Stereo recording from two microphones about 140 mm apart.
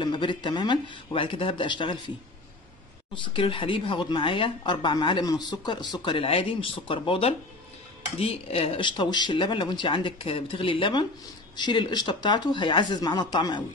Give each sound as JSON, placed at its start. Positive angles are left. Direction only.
{"t": 0.0, "sound": "speech", "side_deg": 35}
{"t": 3.3, "sound": "speech", "side_deg": 40}